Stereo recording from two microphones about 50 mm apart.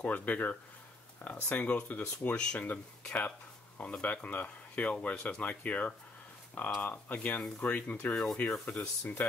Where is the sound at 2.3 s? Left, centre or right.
Centre.